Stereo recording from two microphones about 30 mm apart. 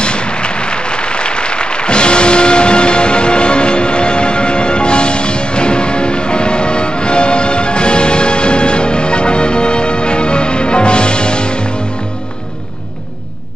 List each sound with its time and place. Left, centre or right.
0.0 s applause: left